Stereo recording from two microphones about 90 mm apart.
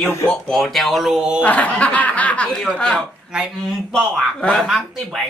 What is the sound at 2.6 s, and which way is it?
Speech, 10° left (ahead or behind).